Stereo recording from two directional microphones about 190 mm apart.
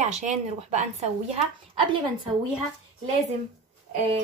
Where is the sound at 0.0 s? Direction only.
40° right (ahead or behind).